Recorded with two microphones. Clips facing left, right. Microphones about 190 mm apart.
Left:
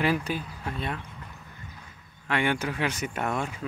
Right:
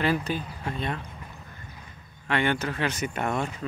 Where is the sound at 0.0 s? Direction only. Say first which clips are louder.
Even; 10° left (ahead or behind).